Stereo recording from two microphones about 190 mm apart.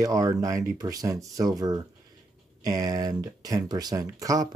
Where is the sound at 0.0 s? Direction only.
20° right (ahead or behind).